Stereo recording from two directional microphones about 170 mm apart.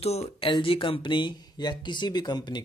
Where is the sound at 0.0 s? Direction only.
35° left (ahead or behind).